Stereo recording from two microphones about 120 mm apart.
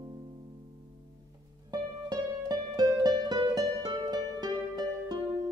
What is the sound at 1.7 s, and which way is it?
Music, 35° right (ahead or behind).